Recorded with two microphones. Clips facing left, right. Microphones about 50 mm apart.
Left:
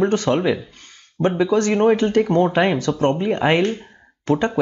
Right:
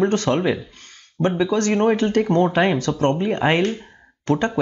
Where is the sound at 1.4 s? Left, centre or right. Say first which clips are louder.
Left 3 dB; left.